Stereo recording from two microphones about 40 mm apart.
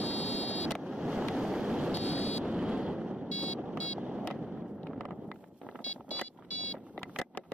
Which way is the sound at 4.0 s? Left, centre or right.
Right.